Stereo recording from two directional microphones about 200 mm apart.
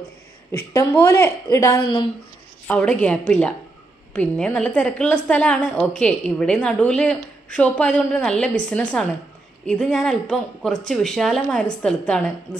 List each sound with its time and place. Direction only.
0.5 s a woman's voice: 10° left (ahead or behind)
2.7 s a woman's voice: 5° left (ahead or behind)
12.5 s speech: 20° left (ahead or behind)